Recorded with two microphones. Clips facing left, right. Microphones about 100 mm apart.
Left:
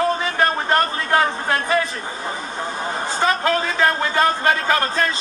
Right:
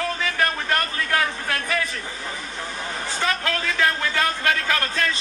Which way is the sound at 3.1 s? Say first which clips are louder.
Left 6 dB; 35° left (ahead or behind).